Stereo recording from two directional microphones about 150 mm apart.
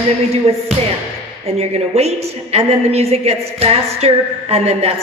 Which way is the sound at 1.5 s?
45° right (ahead or behind).